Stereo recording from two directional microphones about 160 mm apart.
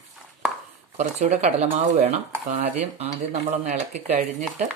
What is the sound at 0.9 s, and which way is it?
Speech, 45° right (ahead or behind).